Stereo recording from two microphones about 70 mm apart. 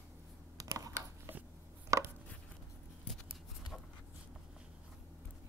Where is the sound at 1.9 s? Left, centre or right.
Right.